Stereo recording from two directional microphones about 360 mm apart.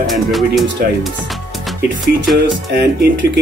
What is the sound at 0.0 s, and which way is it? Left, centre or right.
Speech, centre.